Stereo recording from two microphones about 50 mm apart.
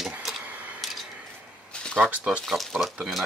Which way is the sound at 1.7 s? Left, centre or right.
Centre.